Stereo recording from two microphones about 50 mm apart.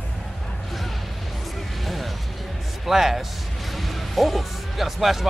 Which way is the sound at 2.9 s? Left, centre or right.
Centre.